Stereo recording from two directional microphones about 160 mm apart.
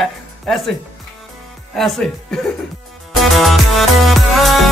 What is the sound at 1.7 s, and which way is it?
Speech, centre (ahead or behind).